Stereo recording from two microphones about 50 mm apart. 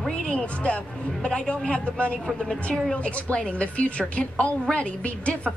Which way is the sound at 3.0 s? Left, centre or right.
Left.